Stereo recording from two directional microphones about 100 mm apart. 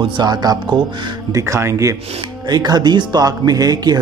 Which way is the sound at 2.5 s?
45° right (ahead or behind).